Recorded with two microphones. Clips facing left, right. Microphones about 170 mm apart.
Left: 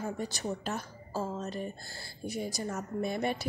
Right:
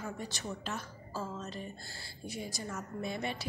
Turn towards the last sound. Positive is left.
turn(degrees=45)  # may be behind; listen again after turning